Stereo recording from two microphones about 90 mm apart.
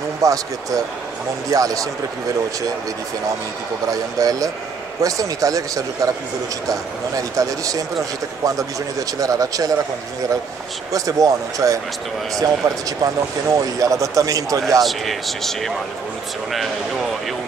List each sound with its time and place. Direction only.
0.2 s speech: 40° right (ahead or behind)
3.9 s speech: 40° right (ahead or behind)
9.2 s speech: 40° right (ahead or behind)
10.9 s speech: 40° right (ahead or behind)
14.8 s speech: centre (ahead or behind)